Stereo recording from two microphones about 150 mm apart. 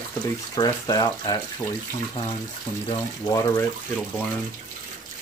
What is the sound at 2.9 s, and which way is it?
Speech, 25° left (ahead or behind).